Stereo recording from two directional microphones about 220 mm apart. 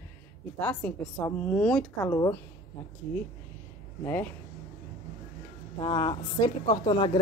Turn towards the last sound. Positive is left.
turn(degrees=20)  # may be behind; listen again after turning